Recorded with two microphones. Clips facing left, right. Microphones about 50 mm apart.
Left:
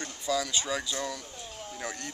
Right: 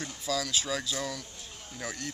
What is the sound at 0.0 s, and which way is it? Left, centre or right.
Speech, centre.